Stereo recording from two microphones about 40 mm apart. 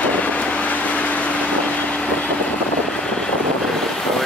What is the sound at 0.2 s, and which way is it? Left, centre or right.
Vehicle, left.